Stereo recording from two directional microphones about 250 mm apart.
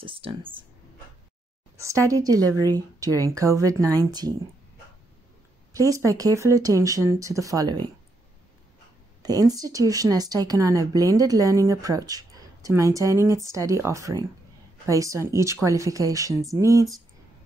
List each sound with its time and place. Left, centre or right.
0.0 s speech: right
1.8 s speech: centre
5.7 s speech: centre
9.2 s speech: centre